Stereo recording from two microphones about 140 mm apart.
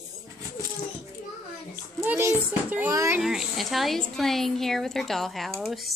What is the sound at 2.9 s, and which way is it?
Speech, 25° right (ahead or behind).